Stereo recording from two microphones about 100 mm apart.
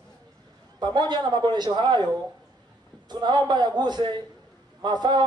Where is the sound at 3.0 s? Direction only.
45° right (ahead or behind).